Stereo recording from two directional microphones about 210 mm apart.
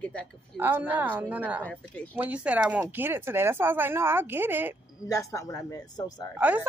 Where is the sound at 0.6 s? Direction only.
10° right (ahead or behind).